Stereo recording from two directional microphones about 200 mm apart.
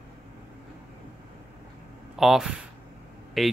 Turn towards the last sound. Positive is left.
turn(degrees=0)  # may be behind; listen again after turning